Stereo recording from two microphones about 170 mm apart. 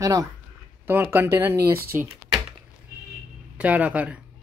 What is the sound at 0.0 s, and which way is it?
Speech, 20° right (ahead or behind).